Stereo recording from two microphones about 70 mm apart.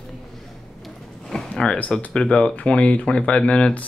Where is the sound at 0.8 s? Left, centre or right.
Centre.